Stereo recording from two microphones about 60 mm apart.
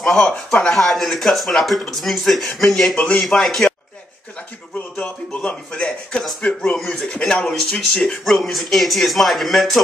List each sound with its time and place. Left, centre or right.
0.0 s speech: centre
3.0 s speech: centre
3.3 s speech: centre
5.0 s speech: left; by 9.8 s centre